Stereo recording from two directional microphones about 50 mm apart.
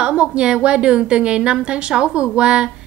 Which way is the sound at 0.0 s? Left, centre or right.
Right.